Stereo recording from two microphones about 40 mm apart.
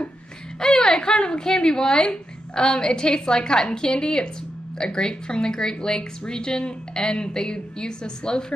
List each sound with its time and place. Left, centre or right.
0.6 s a woman's voice: centre